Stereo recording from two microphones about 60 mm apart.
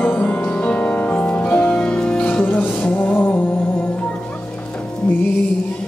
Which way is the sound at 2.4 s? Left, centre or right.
Left.